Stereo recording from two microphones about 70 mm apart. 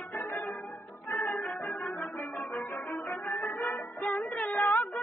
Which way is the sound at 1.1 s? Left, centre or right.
Left.